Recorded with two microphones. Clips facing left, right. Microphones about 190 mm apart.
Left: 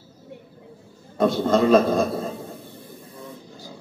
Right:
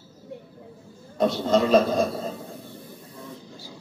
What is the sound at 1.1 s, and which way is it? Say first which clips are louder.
Speech: left 2 dB; 55° left (ahead or behind).